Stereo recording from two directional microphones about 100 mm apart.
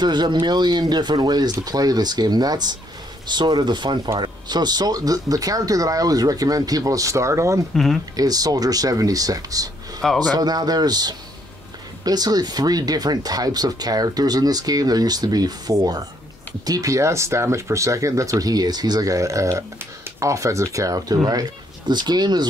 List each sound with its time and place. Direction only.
0.0 s speech: 50° right (ahead or behind); by 7.6 s 30° right (ahead or behind)
7.7 s speech: centre (ahead or behind)
8.2 s speech: 40° right (ahead or behind)
10.0 s speech: 5° right (ahead or behind)
10.3 s speech: 40° right (ahead or behind)